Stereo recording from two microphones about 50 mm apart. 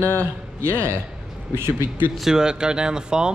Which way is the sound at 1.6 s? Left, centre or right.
Right.